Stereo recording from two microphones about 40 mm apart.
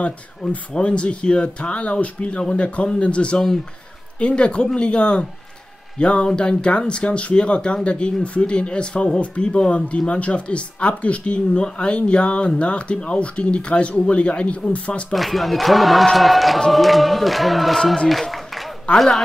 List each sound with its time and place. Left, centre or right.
0.4 s speech: left
15.1 s speech: centre
18.9 s speech: centre